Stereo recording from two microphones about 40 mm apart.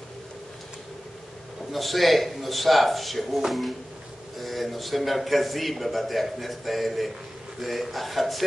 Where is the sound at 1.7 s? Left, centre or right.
Centre.